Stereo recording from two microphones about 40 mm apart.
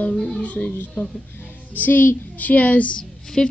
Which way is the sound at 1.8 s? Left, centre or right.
Left.